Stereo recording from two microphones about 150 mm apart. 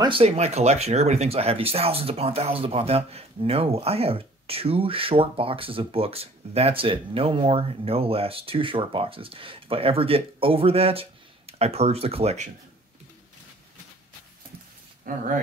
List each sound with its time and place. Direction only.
0.0 s speech: 40° right (ahead or behind)
15.0 s speech: 65° right (ahead or behind)